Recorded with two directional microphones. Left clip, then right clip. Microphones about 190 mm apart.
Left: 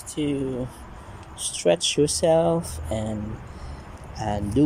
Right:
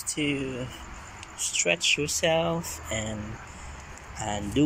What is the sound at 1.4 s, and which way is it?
Speech, 30° left (ahead or behind).